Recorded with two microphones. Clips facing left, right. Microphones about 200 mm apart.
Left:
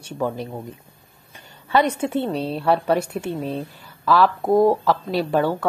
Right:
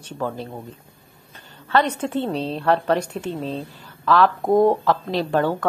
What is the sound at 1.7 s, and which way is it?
A woman's voice, 10° left (ahead or behind).